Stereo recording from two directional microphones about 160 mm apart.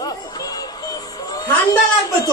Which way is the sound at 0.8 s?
25° left (ahead or behind).